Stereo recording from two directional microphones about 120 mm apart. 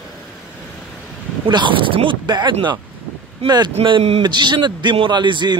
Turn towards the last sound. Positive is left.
turn(degrees=-40)  # may be behind; listen again after turning